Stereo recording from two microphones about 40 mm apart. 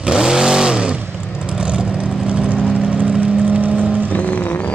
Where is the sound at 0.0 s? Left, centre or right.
Centre.